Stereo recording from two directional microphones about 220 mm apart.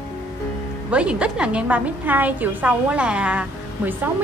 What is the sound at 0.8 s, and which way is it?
A woman's voice, 5° right (ahead or behind).